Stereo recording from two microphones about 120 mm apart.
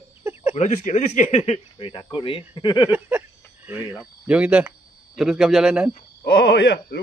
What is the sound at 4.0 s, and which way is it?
Speech, 10° right (ahead or behind).